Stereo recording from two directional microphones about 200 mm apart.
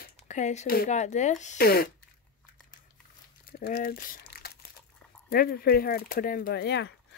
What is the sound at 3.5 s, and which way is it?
Speech, 50° left (ahead or behind).